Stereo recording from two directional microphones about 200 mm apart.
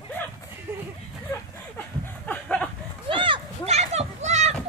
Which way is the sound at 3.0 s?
25° right (ahead or behind).